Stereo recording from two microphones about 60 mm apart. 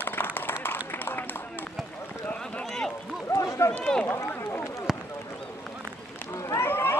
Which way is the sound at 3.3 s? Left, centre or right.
Left.